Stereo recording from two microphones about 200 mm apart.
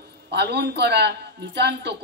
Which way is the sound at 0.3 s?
55° right (ahead or behind).